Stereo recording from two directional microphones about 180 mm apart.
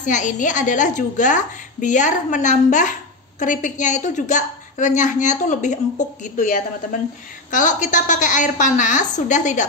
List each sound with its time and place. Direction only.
0.0 s a woman's voice: 45° left (ahead or behind)